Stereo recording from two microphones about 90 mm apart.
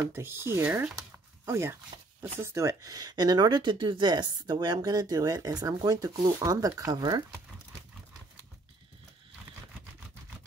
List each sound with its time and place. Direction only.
0.0 s speech: 25° right (ahead or behind)
0.9 s a sound: 35° right (ahead or behind)
2.3 s speech: 30° right (ahead or behind); by 7.3 s 50° right (ahead or behind)